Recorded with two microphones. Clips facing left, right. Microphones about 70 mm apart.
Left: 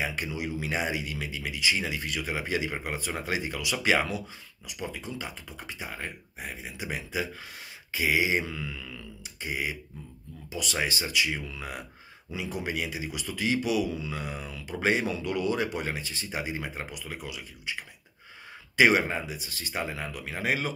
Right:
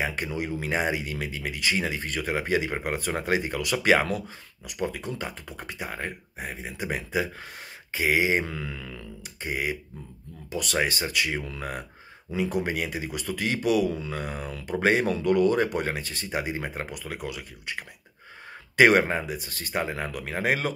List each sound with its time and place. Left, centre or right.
0.0 s speech: right